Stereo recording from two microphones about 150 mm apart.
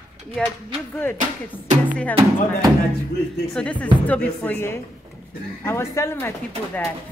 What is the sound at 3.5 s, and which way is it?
Speech, 5° left (ahead or behind).